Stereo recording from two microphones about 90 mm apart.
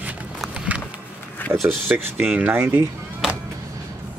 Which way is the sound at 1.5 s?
30° right (ahead or behind).